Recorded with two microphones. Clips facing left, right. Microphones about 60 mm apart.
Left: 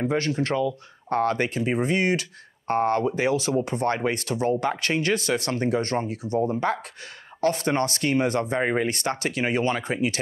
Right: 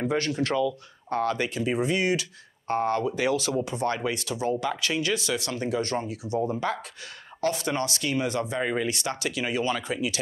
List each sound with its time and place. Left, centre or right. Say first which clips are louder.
0.1 s speech: left 2 dB; left
3.3 s speech: left 2 dB; left
3.6 s speech: left 3 dB; left